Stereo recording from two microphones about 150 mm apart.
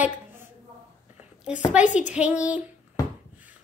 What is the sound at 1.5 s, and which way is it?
A woman's voice, 5° right (ahead or behind).